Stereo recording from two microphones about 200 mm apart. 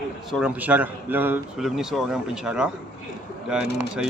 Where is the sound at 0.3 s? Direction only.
5° right (ahead or behind).